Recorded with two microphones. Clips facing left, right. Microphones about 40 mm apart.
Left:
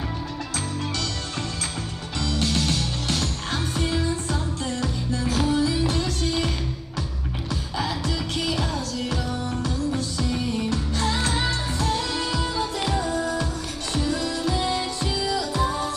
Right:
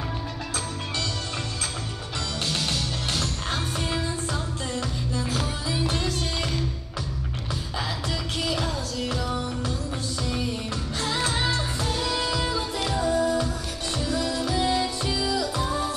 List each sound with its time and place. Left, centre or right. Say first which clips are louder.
2.3 s music: left 4 dB; centre
5.5 s music: left 6 dB; centre
7.7 s music: left 3 dB; centre
9.3 s music: left 1 dB; right
10.1 s music: left 3 dB; centre
11.5 s music: left 2 dB; centre